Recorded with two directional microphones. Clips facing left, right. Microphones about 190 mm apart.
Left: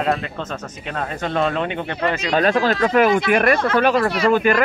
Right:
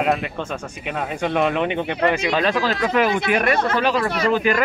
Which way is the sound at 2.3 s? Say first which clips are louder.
Left 3 dB; 50° left (ahead or behind).